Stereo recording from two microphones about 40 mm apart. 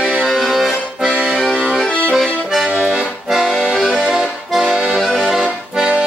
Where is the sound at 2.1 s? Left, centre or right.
Centre.